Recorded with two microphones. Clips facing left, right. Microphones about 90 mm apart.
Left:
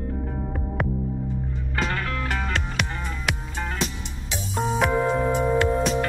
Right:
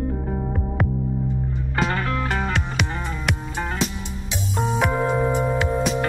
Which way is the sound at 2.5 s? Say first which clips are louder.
Right 3 dB; centre (ahead or behind).